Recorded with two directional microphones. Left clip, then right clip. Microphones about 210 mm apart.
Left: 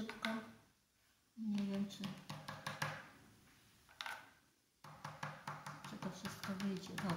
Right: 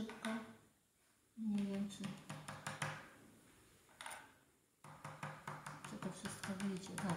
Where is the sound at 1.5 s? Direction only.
10° left (ahead or behind).